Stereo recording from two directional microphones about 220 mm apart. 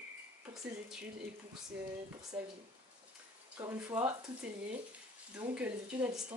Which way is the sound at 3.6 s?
10° right (ahead or behind).